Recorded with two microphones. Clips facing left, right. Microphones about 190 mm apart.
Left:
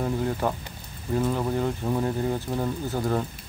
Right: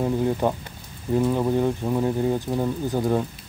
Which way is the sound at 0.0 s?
15° right (ahead or behind).